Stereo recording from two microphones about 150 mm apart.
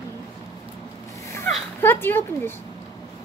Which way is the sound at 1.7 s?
15° left (ahead or behind).